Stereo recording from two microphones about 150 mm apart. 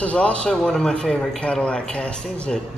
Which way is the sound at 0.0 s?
10° left (ahead or behind).